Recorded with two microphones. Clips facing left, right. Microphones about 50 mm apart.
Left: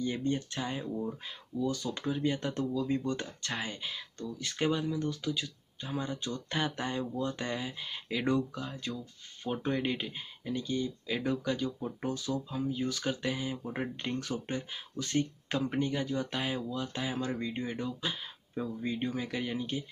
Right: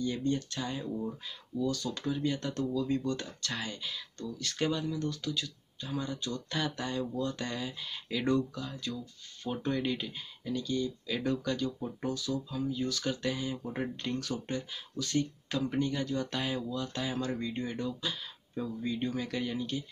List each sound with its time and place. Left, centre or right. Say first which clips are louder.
0.0 s speech: even; left
8.5 s speech: even; left